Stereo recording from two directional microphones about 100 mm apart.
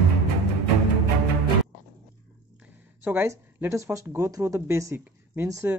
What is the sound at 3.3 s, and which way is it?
Speech, 30° right (ahead or behind).